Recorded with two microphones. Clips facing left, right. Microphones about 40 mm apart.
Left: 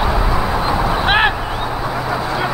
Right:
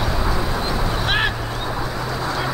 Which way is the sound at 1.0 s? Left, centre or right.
Left.